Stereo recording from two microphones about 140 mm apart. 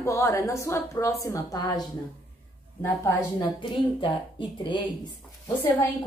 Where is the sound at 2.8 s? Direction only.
25° left (ahead or behind).